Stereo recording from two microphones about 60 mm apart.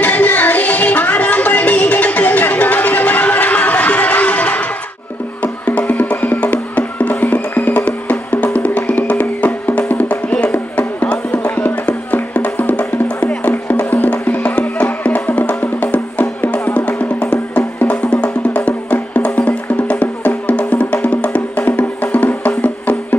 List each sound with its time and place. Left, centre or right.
0.0 s music: left